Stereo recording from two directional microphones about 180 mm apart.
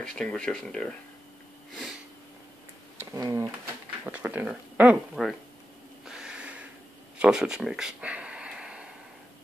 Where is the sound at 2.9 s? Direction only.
15° right (ahead or behind).